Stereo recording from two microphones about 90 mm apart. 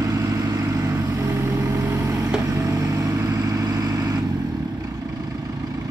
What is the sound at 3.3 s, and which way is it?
Vehicle, 40° right (ahead or behind).